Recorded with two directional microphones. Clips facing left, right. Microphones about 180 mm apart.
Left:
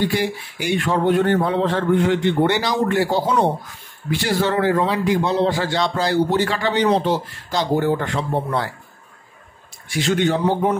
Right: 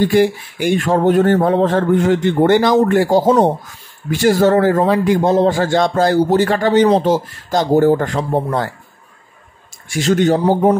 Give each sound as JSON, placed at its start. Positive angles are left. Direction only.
{"t": 0.0, "sound": "a man's voice", "side_deg": -50}
{"t": 9.8, "sound": "a man's voice", "side_deg": -45}